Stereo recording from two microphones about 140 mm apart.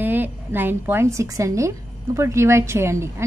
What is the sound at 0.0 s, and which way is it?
A woman's voice, 15° right (ahead or behind).